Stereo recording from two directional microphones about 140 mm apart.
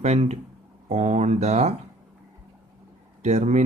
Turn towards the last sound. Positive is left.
turn(degrees=-55)  # may be behind; listen again after turning